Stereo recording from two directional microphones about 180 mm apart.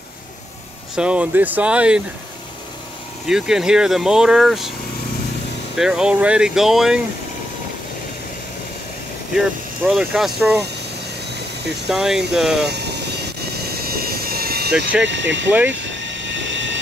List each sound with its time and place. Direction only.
0.9 s speech: 5° right (ahead or behind)
3.3 s speech: 5° right (ahead or behind)
5.8 s speech: 5° right (ahead or behind)
9.3 s speech: 5° right (ahead or behind)
11.9 s speech: centre (ahead or behind)
12.6 s vehicle: 70° right (ahead or behind)
15.0 s speech: 90° right
15.7 s vehicle: 90° right